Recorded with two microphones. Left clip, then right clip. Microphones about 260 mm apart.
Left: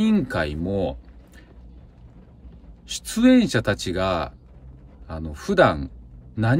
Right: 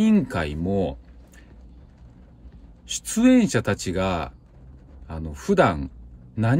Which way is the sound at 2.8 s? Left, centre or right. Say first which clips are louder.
Left 1 dB; left.